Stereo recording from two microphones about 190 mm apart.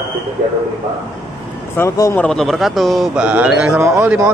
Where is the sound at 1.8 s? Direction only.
15° left (ahead or behind).